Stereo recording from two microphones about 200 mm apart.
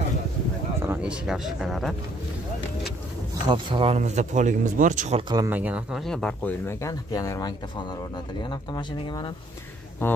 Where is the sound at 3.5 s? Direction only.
25° right (ahead or behind).